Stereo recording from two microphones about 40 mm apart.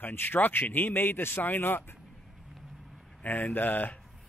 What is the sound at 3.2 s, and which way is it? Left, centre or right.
Speech, left.